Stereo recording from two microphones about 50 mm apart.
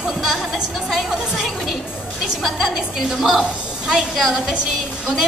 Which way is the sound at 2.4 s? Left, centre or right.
Centre.